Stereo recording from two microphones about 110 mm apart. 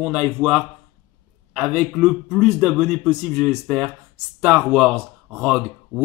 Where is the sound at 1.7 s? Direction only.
5° right (ahead or behind).